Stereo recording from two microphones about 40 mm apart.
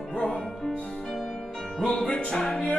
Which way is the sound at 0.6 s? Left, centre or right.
Centre.